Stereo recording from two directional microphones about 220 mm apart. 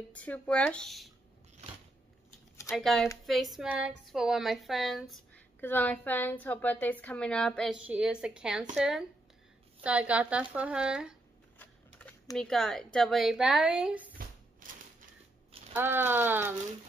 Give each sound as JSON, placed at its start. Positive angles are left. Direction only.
{"t": 0.1, "sound": "speech", "side_deg": 5}
{"t": 2.5, "sound": "a sound", "side_deg": 15}
{"t": 2.8, "sound": "speech", "side_deg": 0}
{"t": 11.5, "sound": "speech", "side_deg": 5}
{"t": 14.1, "sound": "a sound", "side_deg": -40}
{"t": 15.7, "sound": "speech", "side_deg": -10}